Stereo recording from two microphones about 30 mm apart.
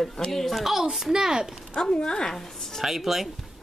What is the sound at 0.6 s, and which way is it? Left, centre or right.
Speech, centre.